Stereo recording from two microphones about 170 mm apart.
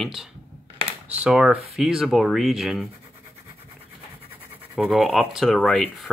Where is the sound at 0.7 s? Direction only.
40° right (ahead or behind).